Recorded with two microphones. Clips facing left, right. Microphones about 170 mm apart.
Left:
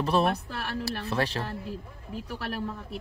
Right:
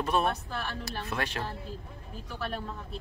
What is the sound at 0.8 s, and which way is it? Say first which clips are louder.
Speech: left 5 dB; 35° left (ahead or behind).